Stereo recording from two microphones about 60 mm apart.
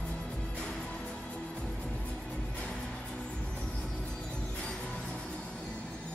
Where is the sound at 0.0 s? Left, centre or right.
Centre.